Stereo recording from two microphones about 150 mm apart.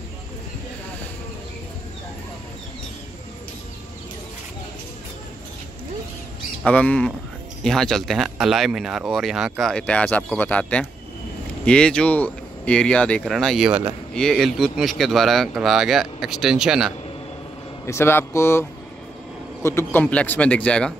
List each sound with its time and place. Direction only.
6.6 s speech: 10° left (ahead or behind)
17.8 s speech: 15° left (ahead or behind)